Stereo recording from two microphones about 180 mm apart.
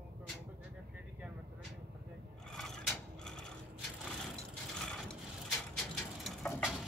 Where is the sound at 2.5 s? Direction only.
5° left (ahead or behind).